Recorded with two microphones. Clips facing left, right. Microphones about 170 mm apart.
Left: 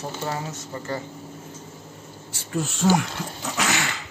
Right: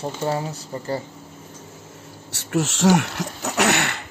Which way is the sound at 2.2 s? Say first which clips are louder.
Right 5 dB; 75° right (ahead or behind).